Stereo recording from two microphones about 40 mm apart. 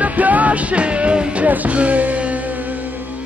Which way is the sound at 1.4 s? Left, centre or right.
Right.